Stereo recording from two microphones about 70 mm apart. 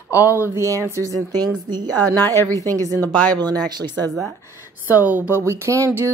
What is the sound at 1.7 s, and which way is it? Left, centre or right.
Speech, right.